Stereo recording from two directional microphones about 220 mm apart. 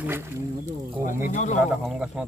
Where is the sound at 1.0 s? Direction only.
35° left (ahead or behind).